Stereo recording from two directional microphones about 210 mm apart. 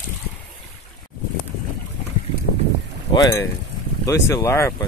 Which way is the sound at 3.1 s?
20° left (ahead or behind).